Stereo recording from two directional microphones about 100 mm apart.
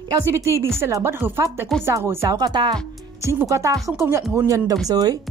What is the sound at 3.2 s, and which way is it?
Speech, 30° right (ahead or behind).